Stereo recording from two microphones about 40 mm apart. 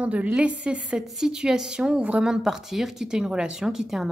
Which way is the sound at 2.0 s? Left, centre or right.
Right.